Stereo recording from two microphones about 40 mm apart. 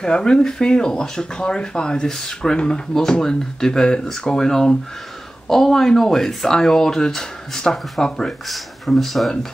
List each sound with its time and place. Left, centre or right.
0.0 s speech: left
8.3 s speech: centre